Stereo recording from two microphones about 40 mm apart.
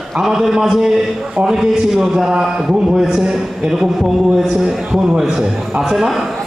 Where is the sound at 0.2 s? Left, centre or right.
Centre.